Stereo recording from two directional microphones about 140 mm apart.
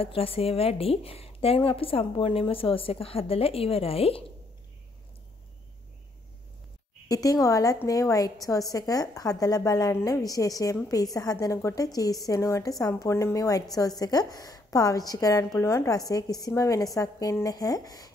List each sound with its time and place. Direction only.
0.0 s a woman's voice: 40° left (ahead or behind)
7.1 s a woman's voice: 25° left (ahead or behind)